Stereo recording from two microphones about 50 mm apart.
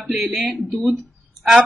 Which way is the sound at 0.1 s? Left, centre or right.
Centre.